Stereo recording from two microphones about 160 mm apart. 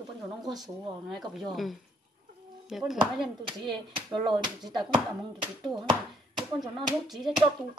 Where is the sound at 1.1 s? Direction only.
Centre (ahead or behind).